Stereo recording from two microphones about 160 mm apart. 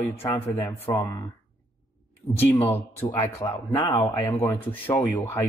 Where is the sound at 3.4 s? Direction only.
25° left (ahead or behind).